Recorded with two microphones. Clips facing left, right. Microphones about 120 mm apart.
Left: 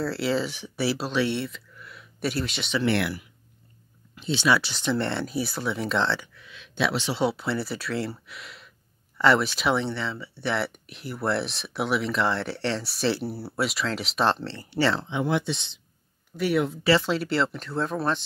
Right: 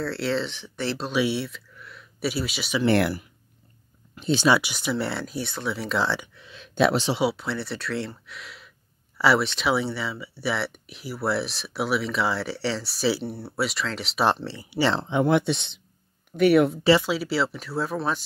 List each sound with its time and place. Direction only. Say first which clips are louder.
0.0 s speech: left 1 dB; centre (ahead or behind)
1.1 s speech: right 1 dB; 5° right (ahead or behind)
2.8 s speech: right 5 dB; 40° right (ahead or behind)
4.1 s a sound: right 4 dB; 45° right (ahead or behind)
4.6 s speech: even; 10° right (ahead or behind)
6.0 s a sound: even; 15° right (ahead or behind)
6.7 s speech: right 5 dB; 45° right (ahead or behind)
7.2 s speech: even; centre (ahead or behind)
9.8 s speech: right 1 dB; 5° right (ahead or behind)
14.2 s speech: right 2 dB; 15° right (ahead or behind)
15.0 s speech: right 5 dB; 50° right (ahead or behind)
17.0 s speech: even; 5° right (ahead or behind)